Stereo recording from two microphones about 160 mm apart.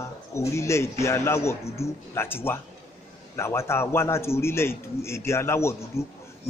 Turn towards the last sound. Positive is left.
turn(degrees=15)  # may be behind; listen again after turning